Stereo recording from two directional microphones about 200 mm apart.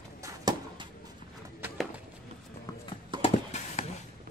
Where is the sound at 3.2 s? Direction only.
30° left (ahead or behind).